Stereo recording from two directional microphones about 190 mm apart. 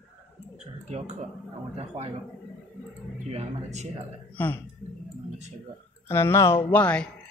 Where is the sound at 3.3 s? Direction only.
35° right (ahead or behind).